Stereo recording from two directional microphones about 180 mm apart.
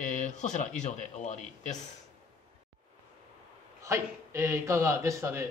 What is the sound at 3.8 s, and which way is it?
A man's voice, 15° right (ahead or behind).